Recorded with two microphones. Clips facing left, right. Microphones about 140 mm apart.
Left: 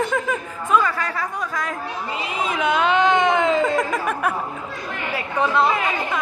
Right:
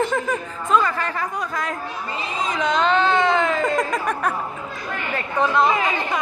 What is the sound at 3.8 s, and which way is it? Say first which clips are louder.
Speech: even; 5° left (ahead or behind).